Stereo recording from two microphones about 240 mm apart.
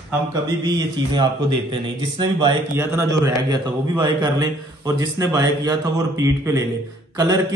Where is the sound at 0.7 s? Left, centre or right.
Centre.